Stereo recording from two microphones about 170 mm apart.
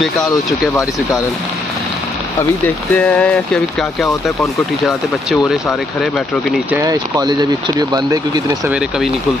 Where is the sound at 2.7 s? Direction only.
5° left (ahead or behind).